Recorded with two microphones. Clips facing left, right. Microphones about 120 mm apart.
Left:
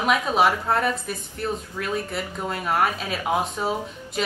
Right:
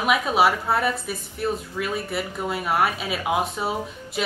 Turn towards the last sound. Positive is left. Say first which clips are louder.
# even
turn(degrees=-5)  # may be behind; listen again after turning